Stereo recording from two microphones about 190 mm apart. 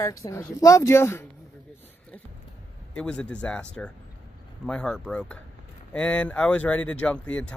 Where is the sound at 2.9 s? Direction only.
5° left (ahead or behind).